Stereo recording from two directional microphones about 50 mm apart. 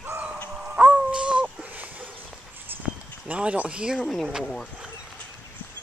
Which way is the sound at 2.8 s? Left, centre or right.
Right.